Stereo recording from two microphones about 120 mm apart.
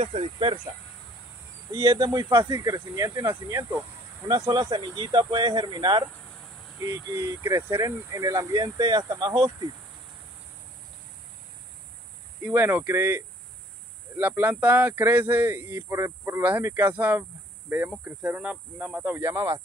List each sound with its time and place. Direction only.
0.0 s speech: 55° right (ahead or behind)
1.7 s speech: 30° right (ahead or behind)
6.9 s speech: 25° right (ahead or behind)
12.4 s speech: 20° right (ahead or behind)